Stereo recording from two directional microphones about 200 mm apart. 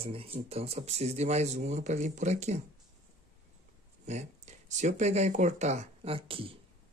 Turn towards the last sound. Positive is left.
turn(degrees=-25)  # may be behind; listen again after turning